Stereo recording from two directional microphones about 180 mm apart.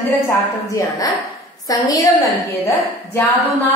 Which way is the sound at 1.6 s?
20° left (ahead or behind).